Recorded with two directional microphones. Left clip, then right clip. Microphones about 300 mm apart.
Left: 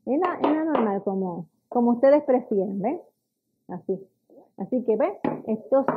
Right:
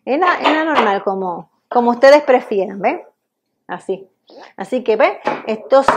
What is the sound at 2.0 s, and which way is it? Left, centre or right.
Speech, centre.